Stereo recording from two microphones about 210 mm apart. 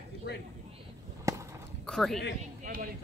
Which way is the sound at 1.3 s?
15° right (ahead or behind).